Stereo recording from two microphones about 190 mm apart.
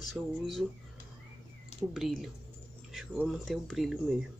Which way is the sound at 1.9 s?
Centre (ahead or behind).